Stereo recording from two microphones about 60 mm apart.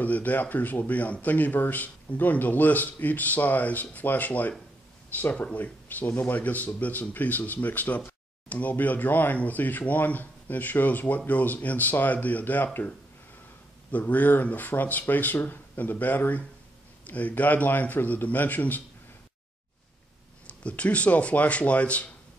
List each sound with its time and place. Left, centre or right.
0.0 s speech: left
13.9 s speech: left
20.4 s speech: left